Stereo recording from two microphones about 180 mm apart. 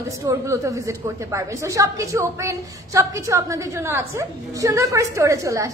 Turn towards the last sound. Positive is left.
turn(degrees=-15)  # may be behind; listen again after turning